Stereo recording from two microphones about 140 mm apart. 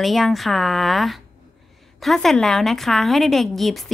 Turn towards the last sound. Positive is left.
turn(degrees=0)  # may be behind; listen again after turning